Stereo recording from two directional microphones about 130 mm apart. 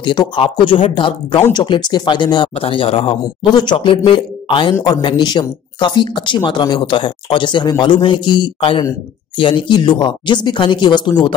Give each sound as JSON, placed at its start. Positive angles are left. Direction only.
{"t": 0.0, "sound": "speech", "side_deg": 35}